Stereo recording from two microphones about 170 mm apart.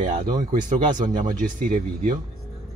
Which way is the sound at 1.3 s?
50° right (ahead or behind).